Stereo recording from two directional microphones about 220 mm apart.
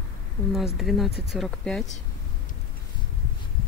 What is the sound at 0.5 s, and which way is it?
Speech, centre (ahead or behind).